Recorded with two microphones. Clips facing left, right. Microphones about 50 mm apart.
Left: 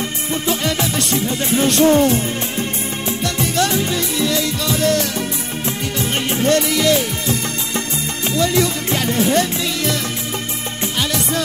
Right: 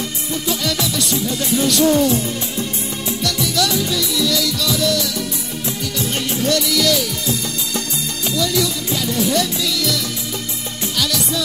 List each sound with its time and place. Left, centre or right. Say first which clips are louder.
0.5 s music: left 2 dB; left
3.3 s music: left 1 dB; left